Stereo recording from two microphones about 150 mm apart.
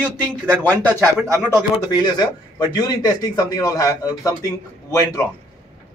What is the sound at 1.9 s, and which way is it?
Speech, 30° left (ahead or behind).